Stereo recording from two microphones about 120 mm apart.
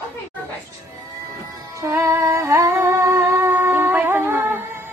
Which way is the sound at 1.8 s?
25° right (ahead or behind).